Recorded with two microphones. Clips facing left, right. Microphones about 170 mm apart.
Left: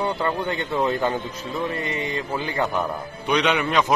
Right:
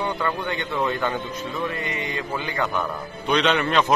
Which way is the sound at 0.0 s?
30° left (ahead or behind).